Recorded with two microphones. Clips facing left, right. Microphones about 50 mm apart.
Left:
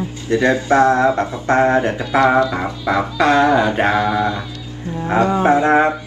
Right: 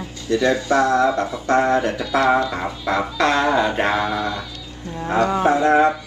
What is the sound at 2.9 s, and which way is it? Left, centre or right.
Music, left.